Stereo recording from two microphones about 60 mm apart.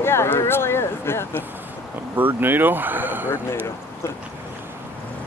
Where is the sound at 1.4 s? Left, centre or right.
Right.